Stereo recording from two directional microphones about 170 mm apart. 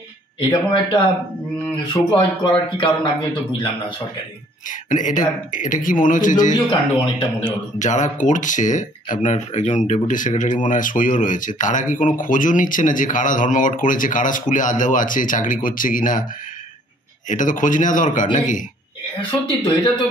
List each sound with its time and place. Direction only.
0.4 s speech: 25° left (ahead or behind)
2.0 s speech: 30° left (ahead or behind)
4.6 s speech: 50° left (ahead or behind)
6.5 s speech: 25° left (ahead or behind)
7.8 s speech: 45° left (ahead or behind)
17.3 s speech: 50° left (ahead or behind)